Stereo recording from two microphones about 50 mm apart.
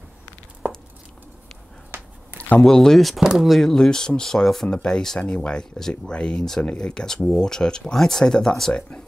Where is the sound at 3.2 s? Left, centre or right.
Centre.